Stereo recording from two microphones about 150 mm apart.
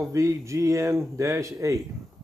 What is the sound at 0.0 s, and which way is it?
Speech, 20° right (ahead or behind).